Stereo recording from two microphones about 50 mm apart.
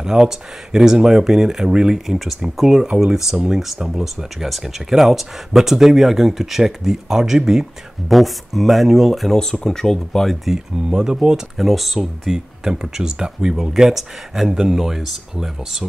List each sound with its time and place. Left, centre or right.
0.0 s speech: centre
2.0 s speech: centre
10.5 s speech: centre